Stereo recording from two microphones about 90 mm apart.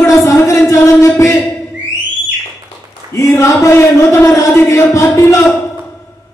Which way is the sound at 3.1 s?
35° left (ahead or behind).